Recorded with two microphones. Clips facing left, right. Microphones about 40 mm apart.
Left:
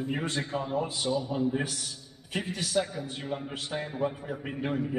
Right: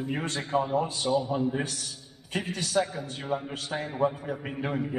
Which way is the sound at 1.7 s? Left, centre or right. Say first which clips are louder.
Even; centre.